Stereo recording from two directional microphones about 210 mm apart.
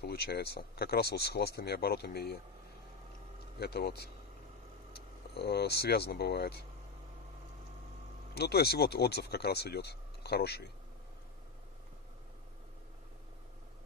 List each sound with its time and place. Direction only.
0.0 s speech: 50° left (ahead or behind)
3.3 s speech: 50° left (ahead or behind)
8.4 s speech: 50° left (ahead or behind)